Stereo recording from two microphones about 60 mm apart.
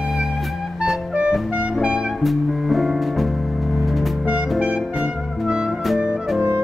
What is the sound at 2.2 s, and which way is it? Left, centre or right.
Music, centre.